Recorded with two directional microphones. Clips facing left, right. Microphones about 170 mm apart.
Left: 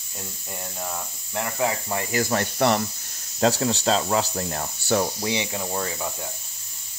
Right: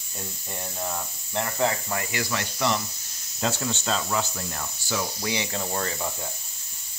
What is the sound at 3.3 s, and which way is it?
Speech, 40° left (ahead or behind).